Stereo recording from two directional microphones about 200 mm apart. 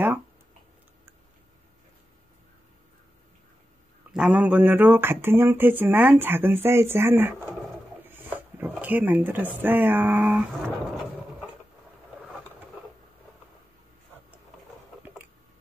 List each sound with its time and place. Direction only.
4.1 s speech: 5° right (ahead or behind)